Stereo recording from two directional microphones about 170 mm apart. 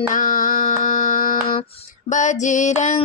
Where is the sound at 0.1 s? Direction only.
55° left (ahead or behind).